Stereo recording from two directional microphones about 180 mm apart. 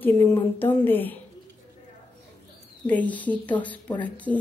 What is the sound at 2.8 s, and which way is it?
Speech, 10° left (ahead or behind).